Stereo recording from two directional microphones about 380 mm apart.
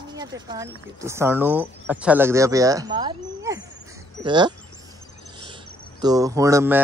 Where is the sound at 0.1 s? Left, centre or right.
Centre.